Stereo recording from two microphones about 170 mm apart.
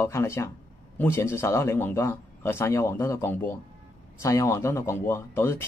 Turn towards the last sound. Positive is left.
turn(degrees=15)  # may be behind; listen again after turning